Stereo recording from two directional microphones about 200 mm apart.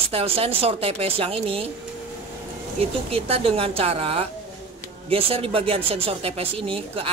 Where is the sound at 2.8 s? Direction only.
30° right (ahead or behind).